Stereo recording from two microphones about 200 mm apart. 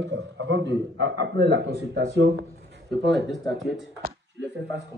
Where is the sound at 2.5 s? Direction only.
55° right (ahead or behind).